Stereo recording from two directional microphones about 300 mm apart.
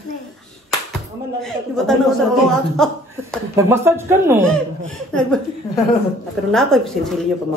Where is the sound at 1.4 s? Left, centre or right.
Centre.